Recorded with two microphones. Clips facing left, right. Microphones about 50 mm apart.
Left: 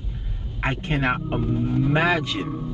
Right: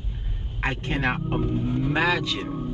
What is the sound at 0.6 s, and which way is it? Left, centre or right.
Speech, left.